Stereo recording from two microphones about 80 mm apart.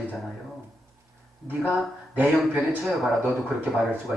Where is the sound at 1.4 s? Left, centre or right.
Right.